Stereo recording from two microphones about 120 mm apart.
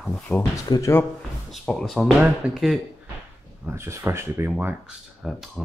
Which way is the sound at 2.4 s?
10° right (ahead or behind).